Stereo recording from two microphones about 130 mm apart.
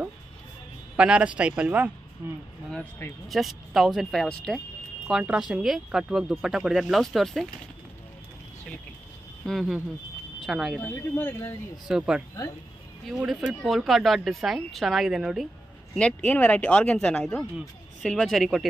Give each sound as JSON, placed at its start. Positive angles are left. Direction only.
{"t": 0.9, "sound": "speech", "side_deg": -10}
{"t": 3.3, "sound": "speech", "side_deg": 0}
{"t": 9.4, "sound": "speech", "side_deg": 0}
{"t": 10.8, "sound": "speech", "side_deg": 15}
{"t": 13.0, "sound": "speech", "side_deg": 0}